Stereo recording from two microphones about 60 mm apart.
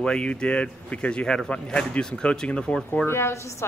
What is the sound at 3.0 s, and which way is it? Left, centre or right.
Speech, left.